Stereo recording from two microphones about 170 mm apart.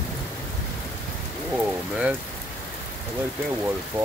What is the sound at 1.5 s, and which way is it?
Speech, 5° right (ahead or behind).